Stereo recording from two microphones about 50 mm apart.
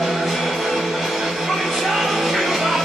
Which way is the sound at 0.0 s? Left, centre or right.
Centre.